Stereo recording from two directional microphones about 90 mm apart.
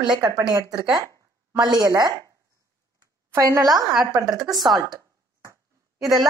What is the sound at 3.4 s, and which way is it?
Speech, 40° right (ahead or behind).